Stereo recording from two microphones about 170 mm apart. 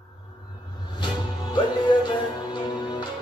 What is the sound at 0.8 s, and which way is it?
Music, 25° left (ahead or behind).